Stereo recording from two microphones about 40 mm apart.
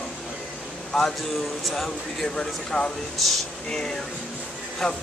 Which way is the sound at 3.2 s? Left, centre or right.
Centre.